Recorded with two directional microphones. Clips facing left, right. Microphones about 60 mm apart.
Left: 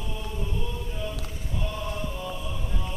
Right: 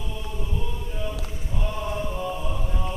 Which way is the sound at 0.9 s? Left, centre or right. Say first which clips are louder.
Right 2 dB; centre.